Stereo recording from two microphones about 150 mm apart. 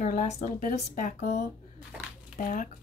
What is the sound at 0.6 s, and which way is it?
Speech, 65° left (ahead or behind).